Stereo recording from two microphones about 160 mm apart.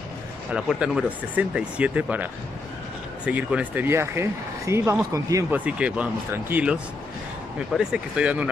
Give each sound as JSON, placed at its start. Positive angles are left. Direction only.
{"t": 0.5, "sound": "speech", "side_deg": -5}
{"t": 3.3, "sound": "speech", "side_deg": -10}
{"t": 5.7, "sound": "speech", "side_deg": -10}